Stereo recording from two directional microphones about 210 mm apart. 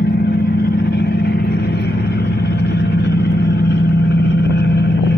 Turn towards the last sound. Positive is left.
turn(degrees=55)  # may be behind; listen again after turning